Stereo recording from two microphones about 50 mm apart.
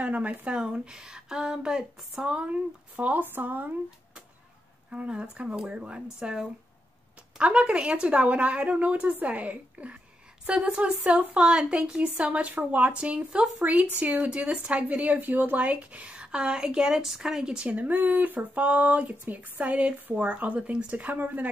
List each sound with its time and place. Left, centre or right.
0.0 s a woman's voice: right
0.5 s a woman's voice: centre; by 3.7 s right
4.9 s a woman's voice: right
12.4 s a woman's voice: right
16.2 s a woman's voice: centre
17.6 s a woman's voice: right